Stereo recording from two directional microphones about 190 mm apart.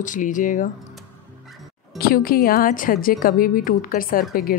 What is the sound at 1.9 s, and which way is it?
A woman's voice, 50° left (ahead or behind).